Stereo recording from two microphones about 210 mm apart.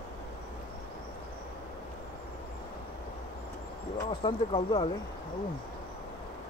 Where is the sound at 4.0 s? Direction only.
25° left (ahead or behind).